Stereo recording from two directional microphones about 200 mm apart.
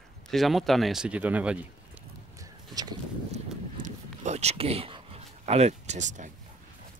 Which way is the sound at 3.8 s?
35° right (ahead or behind).